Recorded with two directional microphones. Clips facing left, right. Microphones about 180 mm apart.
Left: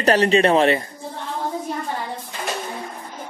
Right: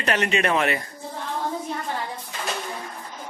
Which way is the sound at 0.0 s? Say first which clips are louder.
Left 7 dB; 35° left (ahead or behind).